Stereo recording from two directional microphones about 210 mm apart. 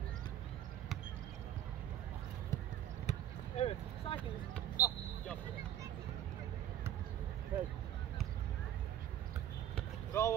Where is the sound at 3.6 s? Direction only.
30° left (ahead or behind).